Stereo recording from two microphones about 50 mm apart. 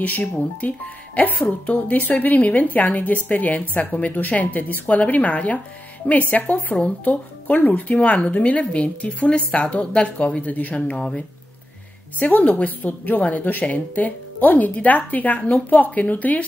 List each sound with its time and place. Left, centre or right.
0.4 s speech: left
12.2 s speech: left